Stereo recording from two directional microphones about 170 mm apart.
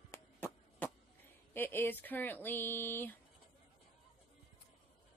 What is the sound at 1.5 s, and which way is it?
A woman's voice, 10° left (ahead or behind).